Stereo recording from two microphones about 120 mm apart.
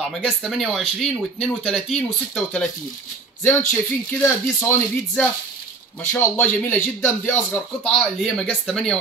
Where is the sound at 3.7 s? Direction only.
20° left (ahead or behind).